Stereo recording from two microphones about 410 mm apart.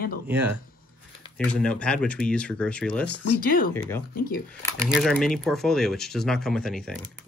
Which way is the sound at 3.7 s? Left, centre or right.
Centre.